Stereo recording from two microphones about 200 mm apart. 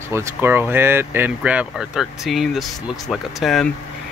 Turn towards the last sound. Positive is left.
turn(degrees=0)  # may be behind; listen again after turning